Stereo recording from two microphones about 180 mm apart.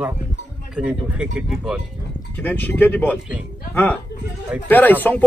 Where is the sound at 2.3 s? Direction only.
10° left (ahead or behind).